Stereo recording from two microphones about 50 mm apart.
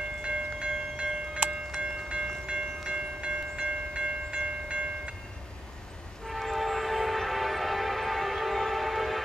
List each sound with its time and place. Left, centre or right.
0.2 s train: right
6.2 s train: centre